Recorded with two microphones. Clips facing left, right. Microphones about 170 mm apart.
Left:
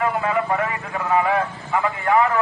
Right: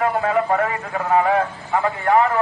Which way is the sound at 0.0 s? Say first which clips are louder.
Right 2 dB; 40° right (ahead or behind).